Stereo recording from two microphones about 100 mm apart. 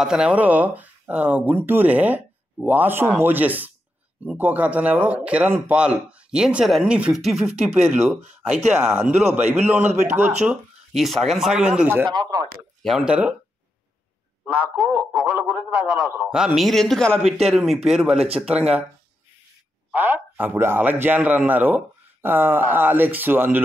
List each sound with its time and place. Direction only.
0.0 s speech: 10° right (ahead or behind)
7.5 s speech: 10° right (ahead or behind)
9.2 s speech: 20° right (ahead or behind)
10.9 s speech: centre (ahead or behind)
12.1 s speech: 45° right (ahead or behind)
12.8 s speech: 5° right (ahead or behind)
14.4 s speech: 10° right (ahead or behind)
18.1 s speech: 90° right
18.4 s speech: 10° right (ahead or behind)
19.9 s a man's voice: 15° right (ahead or behind)